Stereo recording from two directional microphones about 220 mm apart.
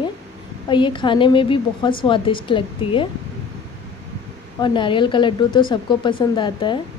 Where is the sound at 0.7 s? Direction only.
20° left (ahead or behind).